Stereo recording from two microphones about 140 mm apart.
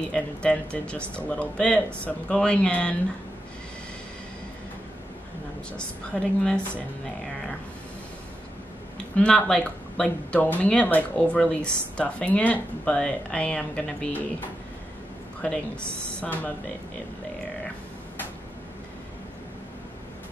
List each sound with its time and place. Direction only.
0.1 s speech: 5° left (ahead or behind)
5.7 s speech: 5° left (ahead or behind)
9.1 s speech: 5° left (ahead or behind)
15.4 s speech: 5° left (ahead or behind)